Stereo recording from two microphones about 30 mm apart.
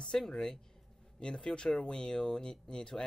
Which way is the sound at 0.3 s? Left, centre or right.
Left.